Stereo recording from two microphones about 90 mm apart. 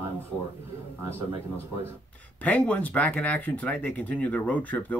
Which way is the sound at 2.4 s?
15° left (ahead or behind).